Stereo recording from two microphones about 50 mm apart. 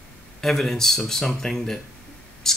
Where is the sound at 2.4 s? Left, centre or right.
Centre.